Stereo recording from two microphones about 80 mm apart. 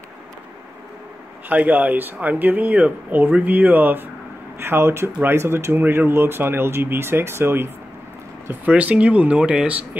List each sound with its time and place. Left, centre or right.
1.5 s speech: centre
8.5 s speech: centre